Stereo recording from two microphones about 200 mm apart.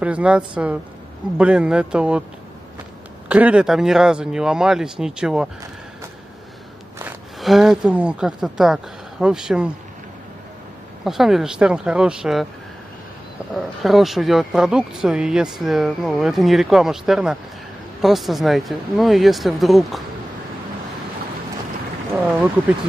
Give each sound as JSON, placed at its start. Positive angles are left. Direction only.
{"t": 0.0, "sound": "speech", "side_deg": -5}
{"t": 3.3, "sound": "speech", "side_deg": -5}
{"t": 7.3, "sound": "speech", "side_deg": 0}
{"t": 11.1, "sound": "speech", "side_deg": 0}
{"t": 13.6, "sound": "speech", "side_deg": 0}